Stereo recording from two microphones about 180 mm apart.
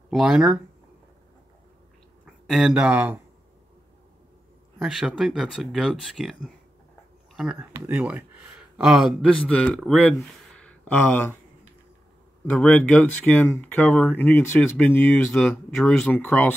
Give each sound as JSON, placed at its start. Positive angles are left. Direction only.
{"t": 0.1, "sound": "speech", "side_deg": -5}
{"t": 2.2, "sound": "speech", "side_deg": 0}
{"t": 4.7, "sound": "speech", "side_deg": -5}
{"t": 12.5, "sound": "speech", "side_deg": 5}